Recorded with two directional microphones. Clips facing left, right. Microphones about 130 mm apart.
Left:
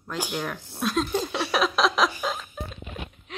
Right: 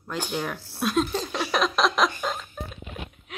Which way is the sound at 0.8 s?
Centre (ahead or behind).